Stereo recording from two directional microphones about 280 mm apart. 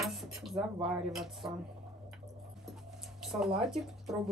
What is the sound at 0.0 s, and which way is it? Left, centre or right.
Dishes, centre.